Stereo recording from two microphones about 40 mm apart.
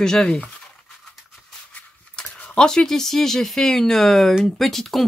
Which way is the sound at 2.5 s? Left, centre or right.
Centre.